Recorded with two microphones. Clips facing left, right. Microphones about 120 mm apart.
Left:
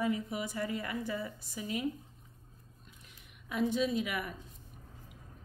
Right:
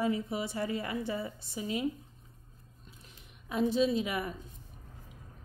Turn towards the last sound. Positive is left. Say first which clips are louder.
# right 3 dB
turn(degrees=-30)  # may be behind; listen again after turning